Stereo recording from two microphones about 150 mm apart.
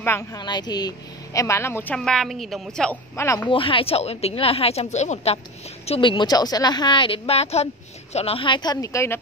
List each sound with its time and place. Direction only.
0.0 s a woman's voice: 15° left (ahead or behind)
0.4 s a woman's voice: 30° left (ahead or behind); by 3.0 s 5° left (ahead or behind)
3.2 s a woman's voice: 15° left (ahead or behind)
3.4 s a woman's voice: 35° left (ahead or behind)
5.9 s speech: 35° left (ahead or behind); by 9.2 s 20° left (ahead or behind)